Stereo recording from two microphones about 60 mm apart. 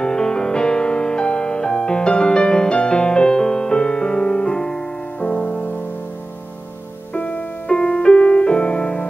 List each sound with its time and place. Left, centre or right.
0.0 s music: centre
7.2 s music: left